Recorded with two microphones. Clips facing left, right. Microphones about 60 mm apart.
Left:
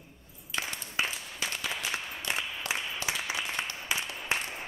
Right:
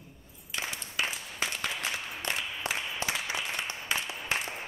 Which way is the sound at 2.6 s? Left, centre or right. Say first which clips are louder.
Right 2 dB; right.